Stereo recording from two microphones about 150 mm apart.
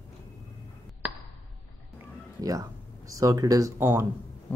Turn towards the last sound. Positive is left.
turn(degrees=-15)  # may be behind; listen again after turning